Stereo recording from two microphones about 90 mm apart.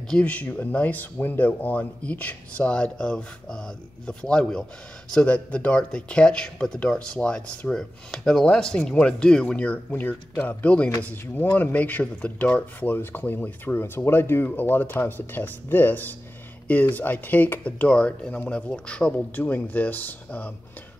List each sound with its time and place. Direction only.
0.1 s speech: 15° left (ahead or behind)